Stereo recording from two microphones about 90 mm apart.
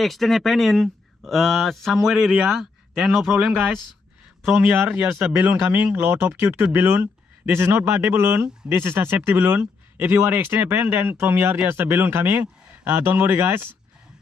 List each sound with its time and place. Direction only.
0.0 s speech: centre (ahead or behind)
4.6 s speech: 25° right (ahead or behind)